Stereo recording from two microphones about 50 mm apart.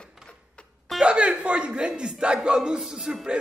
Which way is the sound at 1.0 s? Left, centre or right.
Centre.